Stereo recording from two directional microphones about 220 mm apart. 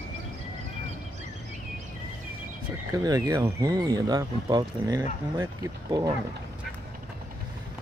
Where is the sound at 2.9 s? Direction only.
15° right (ahead or behind).